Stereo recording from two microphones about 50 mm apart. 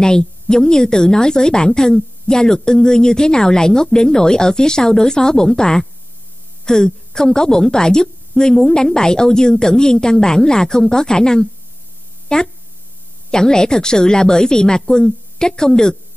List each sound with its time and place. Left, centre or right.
0.0 s a woman's voice: centre